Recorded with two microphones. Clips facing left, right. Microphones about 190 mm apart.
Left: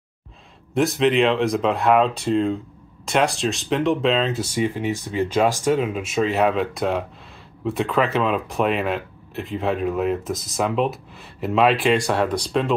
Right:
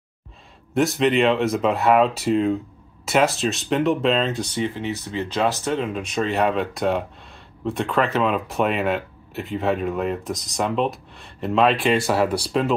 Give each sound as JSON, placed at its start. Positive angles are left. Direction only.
{"t": 0.7, "sound": "speech", "side_deg": 0}